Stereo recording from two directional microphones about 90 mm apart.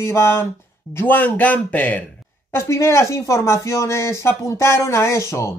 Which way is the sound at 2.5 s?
30° left (ahead or behind).